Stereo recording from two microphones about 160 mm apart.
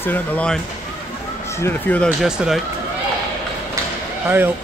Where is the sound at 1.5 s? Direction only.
15° left (ahead or behind).